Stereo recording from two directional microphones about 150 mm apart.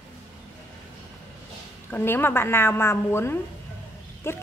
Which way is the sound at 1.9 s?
15° left (ahead or behind).